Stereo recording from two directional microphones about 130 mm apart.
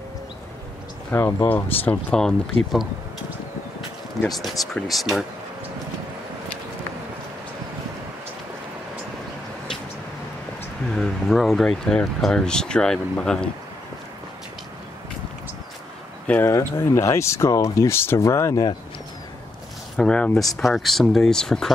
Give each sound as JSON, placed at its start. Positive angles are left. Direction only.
{"t": 1.1, "sound": "speech", "side_deg": 20}
{"t": 4.3, "sound": "speech", "side_deg": 0}
{"t": 11.0, "sound": "speech", "side_deg": 0}
{"t": 16.3, "sound": "speech", "side_deg": 15}
{"t": 20.0, "sound": "speech", "side_deg": 10}